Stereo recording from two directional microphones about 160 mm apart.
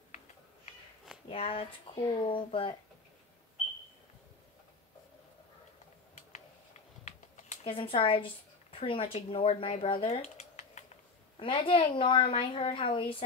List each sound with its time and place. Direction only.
1.3 s a woman's voice: 35° left (ahead or behind)
7.1 s a sound: 45° left (ahead or behind)
8.7 s speech: 35° left (ahead or behind)
11.3 s a woman's voice: 30° left (ahead or behind)